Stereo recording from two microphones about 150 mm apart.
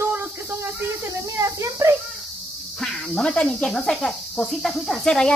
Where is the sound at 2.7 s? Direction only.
5° left (ahead or behind).